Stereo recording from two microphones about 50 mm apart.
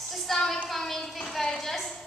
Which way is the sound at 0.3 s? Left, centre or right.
Centre.